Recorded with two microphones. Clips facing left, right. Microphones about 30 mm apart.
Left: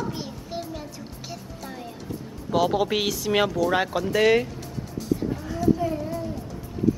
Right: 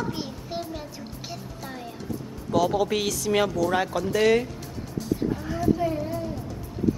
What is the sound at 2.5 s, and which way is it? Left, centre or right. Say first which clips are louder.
Speech: left 1 dB; centre.